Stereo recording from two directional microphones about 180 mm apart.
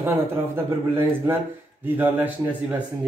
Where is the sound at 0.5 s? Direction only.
15° right (ahead or behind).